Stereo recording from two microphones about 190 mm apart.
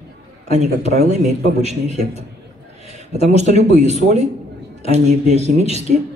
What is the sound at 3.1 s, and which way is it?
Speech, 35° right (ahead or behind).